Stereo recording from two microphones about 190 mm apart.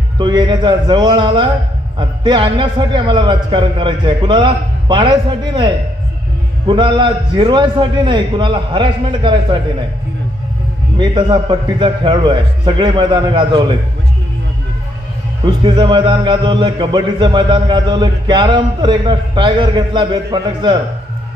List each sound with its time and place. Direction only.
0.2 s a man's voice: 25° right (ahead or behind)
6.7 s a man's voice: 25° right (ahead or behind)
11.0 s a man's voice: 25° right (ahead or behind)
15.4 s a man's voice: 25° right (ahead or behind)